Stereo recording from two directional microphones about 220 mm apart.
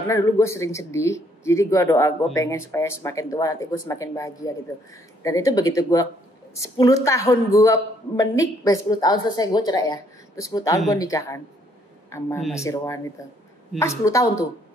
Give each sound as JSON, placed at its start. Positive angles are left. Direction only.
{"t": 0.1, "sound": "a man's voice", "side_deg": 15}
{"t": 12.4, "sound": "speech", "side_deg": 0}
{"t": 12.6, "sound": "a man's voice", "side_deg": 15}